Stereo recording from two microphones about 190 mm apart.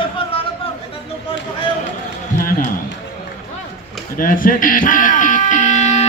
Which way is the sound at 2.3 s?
40° left (ahead or behind).